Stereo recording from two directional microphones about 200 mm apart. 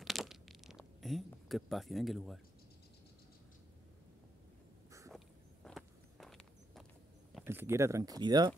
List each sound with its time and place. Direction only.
0.0 s a sound: centre (ahead or behind)
5.1 s walk: centre (ahead or behind)
7.4 s speech: 10° right (ahead or behind)